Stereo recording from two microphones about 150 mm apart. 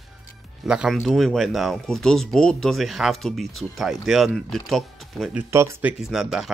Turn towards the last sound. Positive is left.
turn(degrees=0)  # may be behind; listen again after turning